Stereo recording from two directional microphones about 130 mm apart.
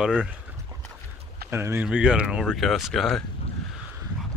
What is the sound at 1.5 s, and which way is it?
Speech, 20° right (ahead or behind).